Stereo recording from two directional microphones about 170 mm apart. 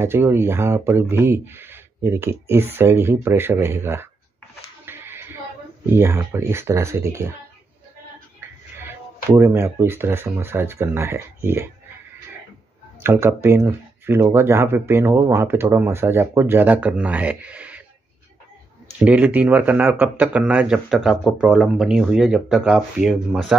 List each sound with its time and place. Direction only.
0.0 s speech: 15° right (ahead or behind)
4.8 s music: 15° right (ahead or behind)
5.9 s speech: 15° right (ahead or behind)
8.4 s speech: 15° right (ahead or behind)
13.0 s speech: 15° right (ahead or behind)
19.0 s speech: 10° right (ahead or behind)